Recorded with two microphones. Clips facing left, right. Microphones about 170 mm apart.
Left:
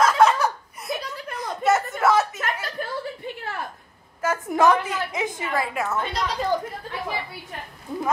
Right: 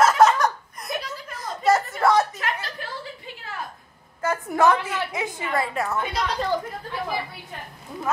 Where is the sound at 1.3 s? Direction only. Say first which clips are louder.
Right 1 dB; centre (ahead or behind).